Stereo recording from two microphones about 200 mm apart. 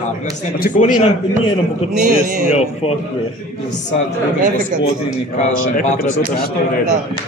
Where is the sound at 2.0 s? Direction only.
45° right (ahead or behind).